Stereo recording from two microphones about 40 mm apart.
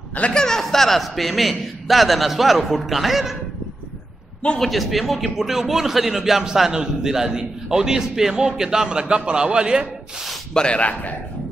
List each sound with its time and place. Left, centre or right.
0.3 s a man's voice: centre
4.6 s a man's voice: centre; by 9.8 s right
10.5 s speech: left
10.8 s a man's voice: left